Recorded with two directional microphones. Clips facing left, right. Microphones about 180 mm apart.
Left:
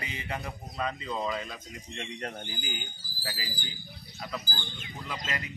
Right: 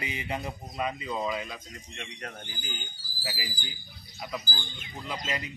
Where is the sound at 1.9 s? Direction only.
30° left (ahead or behind).